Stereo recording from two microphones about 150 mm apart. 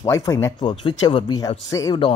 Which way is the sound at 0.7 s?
30° left (ahead or behind).